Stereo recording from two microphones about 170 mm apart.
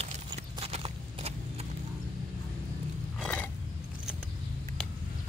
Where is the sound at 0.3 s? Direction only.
35° right (ahead or behind).